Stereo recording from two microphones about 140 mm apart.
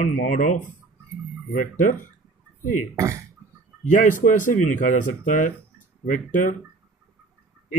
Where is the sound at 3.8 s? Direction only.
65° left (ahead or behind).